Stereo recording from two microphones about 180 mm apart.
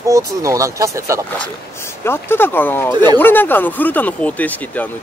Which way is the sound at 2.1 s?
10° left (ahead or behind).